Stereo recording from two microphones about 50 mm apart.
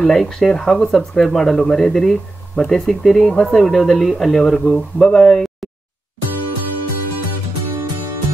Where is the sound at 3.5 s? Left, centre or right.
Centre.